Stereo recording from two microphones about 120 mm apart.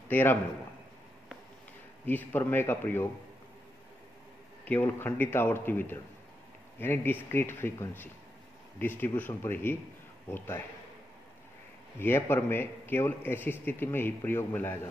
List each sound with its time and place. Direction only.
0.1 s a man's voice: 15° left (ahead or behind)
2.0 s a man's voice: 15° left (ahead or behind)
4.6 s a man's voice: 15° left (ahead or behind)
12.0 s a man's voice: 20° left (ahead or behind)